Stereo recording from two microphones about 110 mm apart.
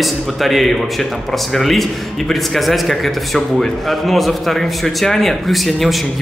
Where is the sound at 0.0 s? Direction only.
Centre (ahead or behind).